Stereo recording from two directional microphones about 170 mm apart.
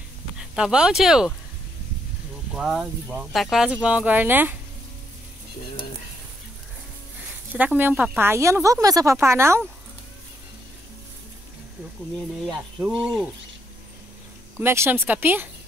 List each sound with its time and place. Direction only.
0.4 s speech: 5° right (ahead or behind)
2.5 s speech: 5° right (ahead or behind)
7.5 s speech: 10° right (ahead or behind)
12.8 s speech: 5° right (ahead or behind)
14.6 s speech: 15° right (ahead or behind)